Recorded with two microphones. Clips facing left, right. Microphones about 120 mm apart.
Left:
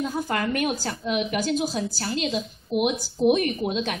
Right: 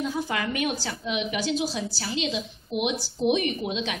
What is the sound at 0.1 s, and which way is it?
A woman's voice, 50° left (ahead or behind).